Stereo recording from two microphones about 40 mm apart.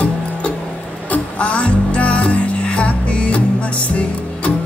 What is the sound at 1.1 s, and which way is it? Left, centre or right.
Music, left.